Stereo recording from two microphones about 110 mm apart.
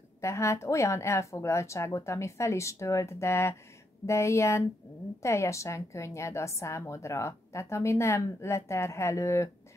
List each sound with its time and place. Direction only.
0.2 s a woman's voice: 25° left (ahead or behind)